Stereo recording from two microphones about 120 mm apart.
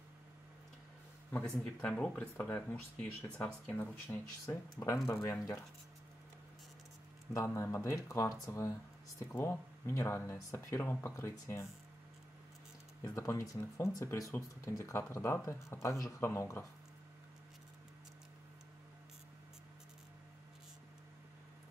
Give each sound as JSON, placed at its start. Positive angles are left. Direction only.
{"t": 1.3, "sound": "speech", "side_deg": 10}
{"t": 4.5, "sound": "speech", "side_deg": 25}
{"t": 7.3, "sound": "speech", "side_deg": 20}
{"t": 13.0, "sound": "speech", "side_deg": 25}